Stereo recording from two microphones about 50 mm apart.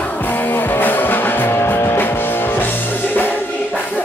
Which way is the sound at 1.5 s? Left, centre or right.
Left.